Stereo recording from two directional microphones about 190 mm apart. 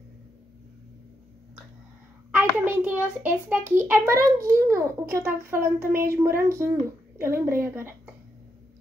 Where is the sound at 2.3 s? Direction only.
10° right (ahead or behind).